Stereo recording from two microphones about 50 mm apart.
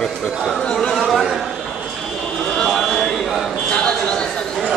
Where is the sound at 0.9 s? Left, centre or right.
Centre.